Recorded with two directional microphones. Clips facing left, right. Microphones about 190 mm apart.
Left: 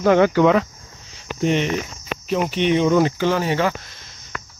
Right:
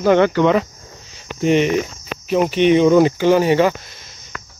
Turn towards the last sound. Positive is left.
turn(degrees=-10)  # may be behind; listen again after turning